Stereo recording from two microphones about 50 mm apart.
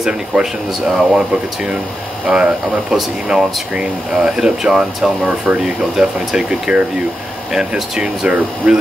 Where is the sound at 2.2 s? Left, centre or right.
Centre.